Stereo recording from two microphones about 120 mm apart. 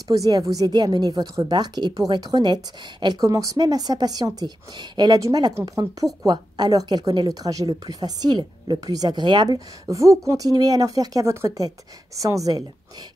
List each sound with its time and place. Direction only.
0.1 s a woman's voice: 30° right (ahead or behind)